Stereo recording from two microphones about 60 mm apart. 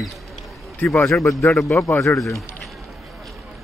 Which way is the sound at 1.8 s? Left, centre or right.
Left.